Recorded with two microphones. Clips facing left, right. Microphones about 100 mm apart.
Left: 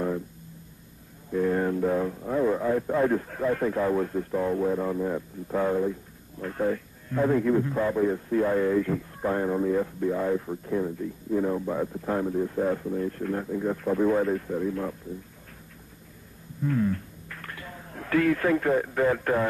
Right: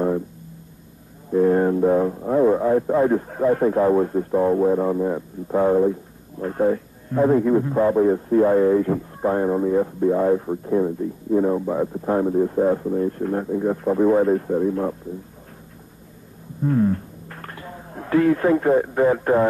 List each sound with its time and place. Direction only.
1.3 s speech: 35° right (ahead or behind)
16.6 s speech: 35° right (ahead or behind)